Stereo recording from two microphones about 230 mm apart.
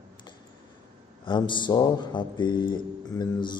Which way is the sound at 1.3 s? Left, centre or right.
Centre.